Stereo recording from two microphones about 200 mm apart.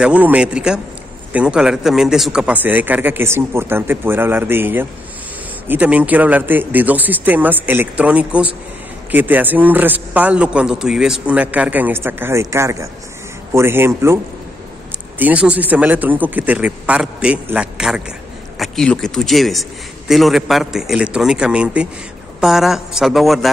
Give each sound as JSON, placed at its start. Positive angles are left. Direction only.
{"t": 0.0, "sound": "a man's voice", "side_deg": -5}